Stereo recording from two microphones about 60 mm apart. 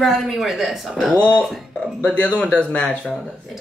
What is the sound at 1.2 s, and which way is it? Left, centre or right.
Speech, left.